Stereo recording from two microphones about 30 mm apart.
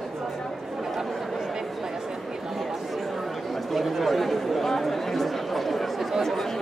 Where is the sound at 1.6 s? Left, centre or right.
Centre.